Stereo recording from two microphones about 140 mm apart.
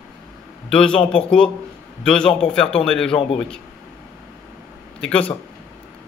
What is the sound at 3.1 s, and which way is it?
Speech, 40° left (ahead or behind).